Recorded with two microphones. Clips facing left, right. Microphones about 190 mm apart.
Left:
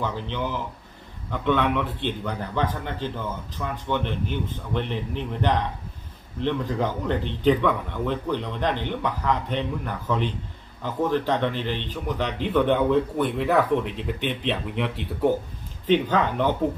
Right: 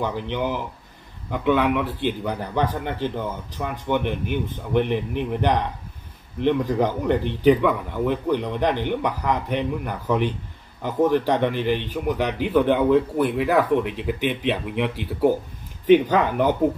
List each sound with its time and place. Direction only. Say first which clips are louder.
0.0 s a man's voice: right 3 dB; 15° right (ahead or behind)